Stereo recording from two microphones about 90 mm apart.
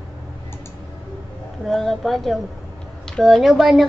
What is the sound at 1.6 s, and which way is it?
Speech, centre (ahead or behind).